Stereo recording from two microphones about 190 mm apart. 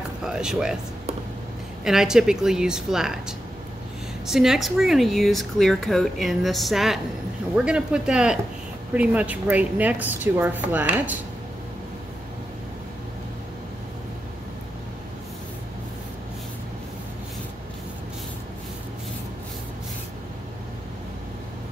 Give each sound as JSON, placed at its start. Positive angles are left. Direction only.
{"t": 0.2, "sound": "speech", "side_deg": -5}
{"t": 1.9, "sound": "speech", "side_deg": -5}